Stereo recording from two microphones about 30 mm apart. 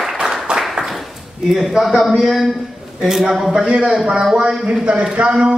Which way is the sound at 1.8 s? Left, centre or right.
Centre.